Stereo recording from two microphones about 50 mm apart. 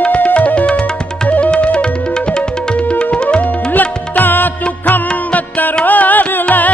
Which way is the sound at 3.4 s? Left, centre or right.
Left.